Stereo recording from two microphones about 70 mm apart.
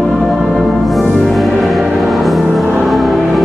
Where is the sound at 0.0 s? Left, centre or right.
Centre.